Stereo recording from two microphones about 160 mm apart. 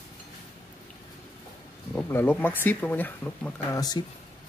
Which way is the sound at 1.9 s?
15° left (ahead or behind).